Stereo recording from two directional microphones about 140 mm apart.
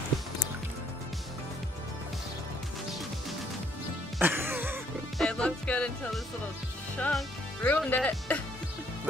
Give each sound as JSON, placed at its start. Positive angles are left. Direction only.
{"t": 4.2, "sound": "music", "side_deg": -15}
{"t": 5.2, "sound": "music", "side_deg": 5}
{"t": 7.0, "sound": "speech", "side_deg": 10}